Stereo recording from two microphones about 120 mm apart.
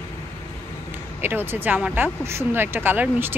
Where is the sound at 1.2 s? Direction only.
20° right (ahead or behind).